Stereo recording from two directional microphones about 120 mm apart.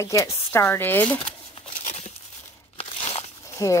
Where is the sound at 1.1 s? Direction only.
50° left (ahead or behind).